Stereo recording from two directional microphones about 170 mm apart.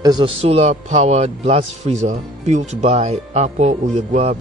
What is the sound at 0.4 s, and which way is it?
A man's voice, 35° right (ahead or behind).